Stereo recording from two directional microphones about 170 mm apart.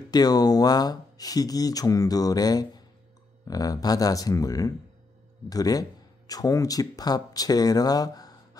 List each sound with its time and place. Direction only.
0.1 s speech: 25° left (ahead or behind)